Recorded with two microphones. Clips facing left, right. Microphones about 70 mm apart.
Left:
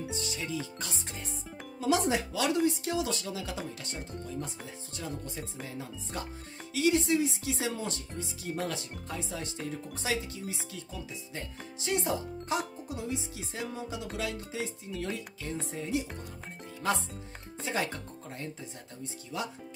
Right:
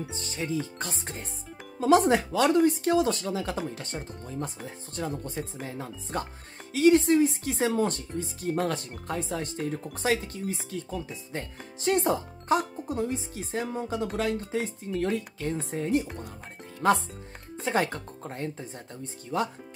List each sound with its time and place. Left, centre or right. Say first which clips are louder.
0.1 s music: right 4 dB; right
1.8 s speech: right 7 dB; right
3.7 s music: right 3 dB; right
4.9 s speech: right 7 dB; right